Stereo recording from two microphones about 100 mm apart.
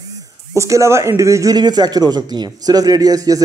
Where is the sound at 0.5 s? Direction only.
30° right (ahead or behind).